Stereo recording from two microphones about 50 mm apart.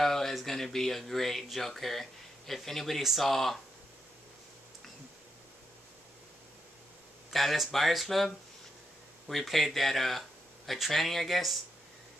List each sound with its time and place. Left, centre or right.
0.0 s speech: centre
7.3 s speech: centre
9.3 s speech: centre